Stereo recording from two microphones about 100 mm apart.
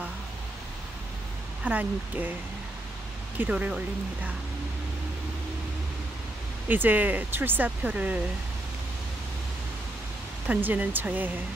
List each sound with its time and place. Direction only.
1.6 s speech: 15° right (ahead or behind)
3.3 s speech: 15° right (ahead or behind)
6.7 s speech: 20° right (ahead or behind)
10.5 s speech: 15° right (ahead or behind)